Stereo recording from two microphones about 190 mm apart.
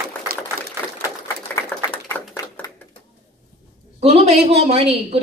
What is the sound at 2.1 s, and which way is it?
Typewriter, 15° left (ahead or behind).